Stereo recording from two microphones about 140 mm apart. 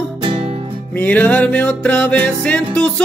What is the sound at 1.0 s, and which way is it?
Music, 10° left (ahead or behind).